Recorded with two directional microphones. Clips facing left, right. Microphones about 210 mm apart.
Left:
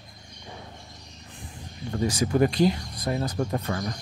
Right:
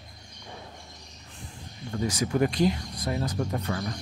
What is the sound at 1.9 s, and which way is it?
Speech, 30° left (ahead or behind).